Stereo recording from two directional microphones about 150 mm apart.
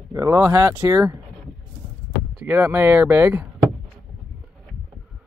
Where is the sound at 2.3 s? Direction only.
10° right (ahead or behind).